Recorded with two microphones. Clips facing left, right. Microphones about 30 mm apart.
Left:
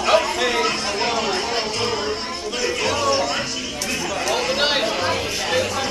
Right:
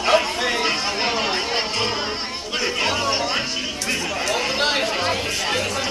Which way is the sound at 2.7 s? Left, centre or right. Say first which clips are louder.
Left 2 dB; right.